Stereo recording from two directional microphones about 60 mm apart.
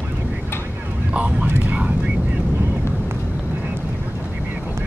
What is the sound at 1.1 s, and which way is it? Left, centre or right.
Vehicle, right.